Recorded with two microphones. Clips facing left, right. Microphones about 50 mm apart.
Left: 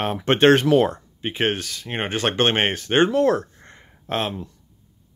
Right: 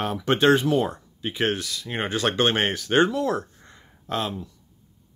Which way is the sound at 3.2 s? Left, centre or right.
Left.